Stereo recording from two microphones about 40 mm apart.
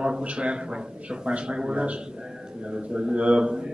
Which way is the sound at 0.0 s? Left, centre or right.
Right.